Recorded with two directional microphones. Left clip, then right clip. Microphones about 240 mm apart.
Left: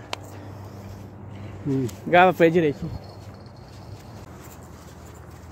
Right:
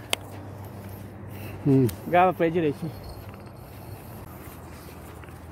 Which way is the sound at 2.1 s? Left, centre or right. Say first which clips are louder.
Left 5 dB; left.